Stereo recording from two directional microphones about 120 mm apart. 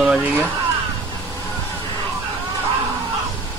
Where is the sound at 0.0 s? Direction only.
10° right (ahead or behind).